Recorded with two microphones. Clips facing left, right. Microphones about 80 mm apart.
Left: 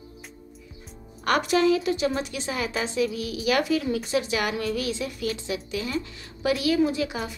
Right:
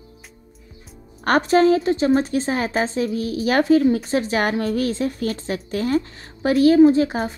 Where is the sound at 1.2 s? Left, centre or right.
Right.